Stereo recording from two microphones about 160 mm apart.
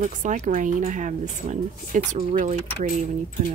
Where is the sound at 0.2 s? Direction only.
50° right (ahead or behind).